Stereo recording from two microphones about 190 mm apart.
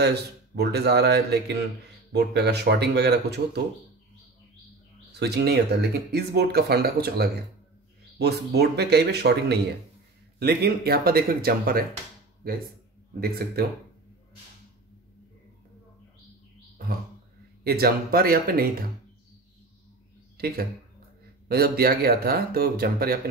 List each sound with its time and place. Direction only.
0.0 s speech: 60° right (ahead or behind)
5.2 s speech: 60° right (ahead or behind)
17.6 s speech: 55° right (ahead or behind)
20.3 s speech: 55° right (ahead or behind)